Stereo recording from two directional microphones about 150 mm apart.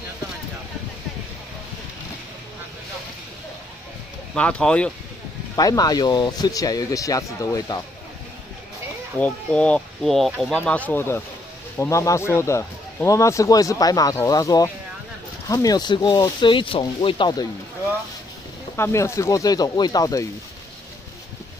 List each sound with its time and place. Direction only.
4.4 s speech: 5° left (ahead or behind)
5.6 s speech: 25° left (ahead or behind)
9.2 s speech: 5° left (ahead or behind); by 17.5 s 30° left (ahead or behind)
18.8 s speech: 15° left (ahead or behind)